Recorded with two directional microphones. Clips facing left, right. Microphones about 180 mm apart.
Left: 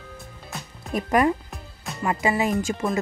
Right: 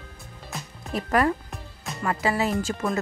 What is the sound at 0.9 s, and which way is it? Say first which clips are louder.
Speech: left 2 dB; 15° left (ahead or behind).